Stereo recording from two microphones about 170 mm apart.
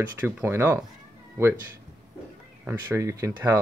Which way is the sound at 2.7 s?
15° right (ahead or behind).